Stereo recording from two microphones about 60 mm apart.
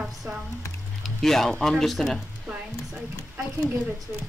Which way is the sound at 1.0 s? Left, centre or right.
Centre.